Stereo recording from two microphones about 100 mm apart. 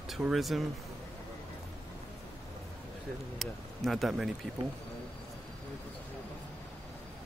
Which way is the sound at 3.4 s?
Centre (ahead or behind).